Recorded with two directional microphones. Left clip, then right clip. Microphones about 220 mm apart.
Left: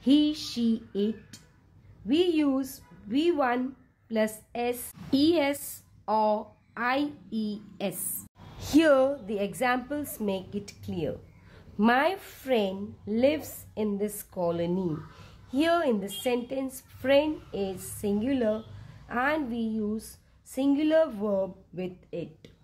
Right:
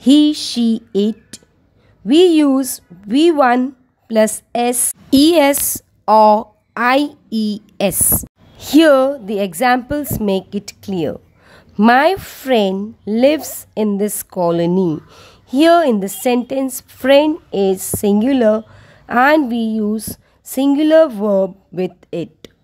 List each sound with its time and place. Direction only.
0.0 s a woman's voice: 45° right (ahead or behind)
8.5 s a woman's voice: 35° right (ahead or behind)